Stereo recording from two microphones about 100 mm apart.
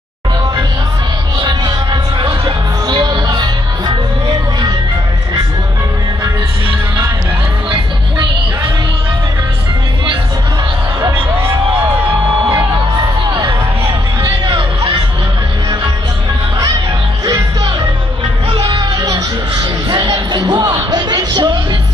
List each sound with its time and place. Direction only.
2.1 s music: 50° right (ahead or behind)
3.1 s music: 45° right (ahead or behind)
18.5 s music: 60° right (ahead or behind)
18.8 s music: 45° right (ahead or behind)